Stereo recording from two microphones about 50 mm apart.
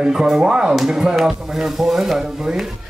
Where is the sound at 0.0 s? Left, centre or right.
Centre.